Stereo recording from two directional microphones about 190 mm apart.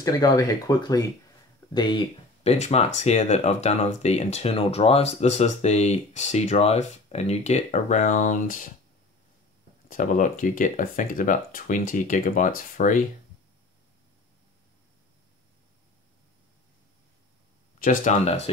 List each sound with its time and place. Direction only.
0.0 s speech: 20° left (ahead or behind); by 8.6 s 45° left (ahead or behind)
9.8 s speech: 45° left (ahead or behind)
17.7 s speech: 45° left (ahead or behind)